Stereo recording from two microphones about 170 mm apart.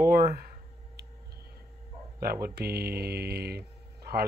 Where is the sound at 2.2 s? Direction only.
65° right (ahead or behind).